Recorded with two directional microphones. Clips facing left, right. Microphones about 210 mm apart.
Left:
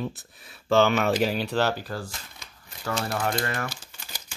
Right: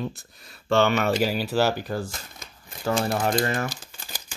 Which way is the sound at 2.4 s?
45° right (ahead or behind).